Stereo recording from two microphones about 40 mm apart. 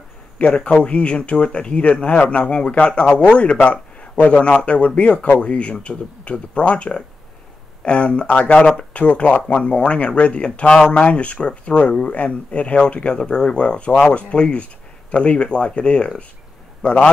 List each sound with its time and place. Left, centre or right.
0.4 s speech: left
11.1 s speech: left